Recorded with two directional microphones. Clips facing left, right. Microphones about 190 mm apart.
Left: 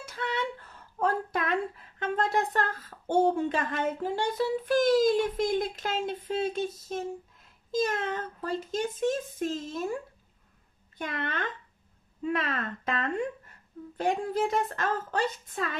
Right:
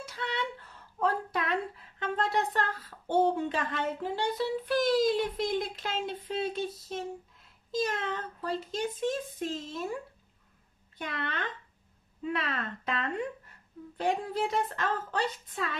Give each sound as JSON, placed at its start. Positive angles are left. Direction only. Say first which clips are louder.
{"t": 0.0, "sound": "a sound", "louder": "left 3 dB", "side_deg": 50}
{"t": 3.1, "sound": "speech", "louder": "left 2 dB", "side_deg": 45}
{"t": 11.0, "sound": "speech", "louder": "left 3 dB", "side_deg": 45}